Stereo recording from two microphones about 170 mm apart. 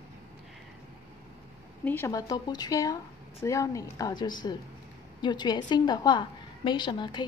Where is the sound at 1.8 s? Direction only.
15° left (ahead or behind).